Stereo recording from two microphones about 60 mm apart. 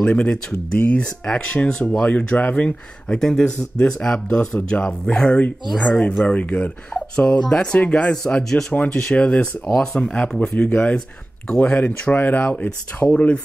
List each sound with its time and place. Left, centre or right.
0.0 s speech: centre
5.7 s speech: centre
6.2 s speech: left
7.7 s speech: left
8.3 s speech: centre
8.7 s speech: left